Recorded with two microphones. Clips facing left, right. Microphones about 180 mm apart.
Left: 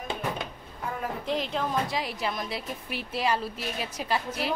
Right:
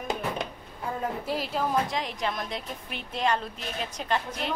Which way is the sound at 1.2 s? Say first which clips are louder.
Left 3 dB; 5° right (ahead or behind).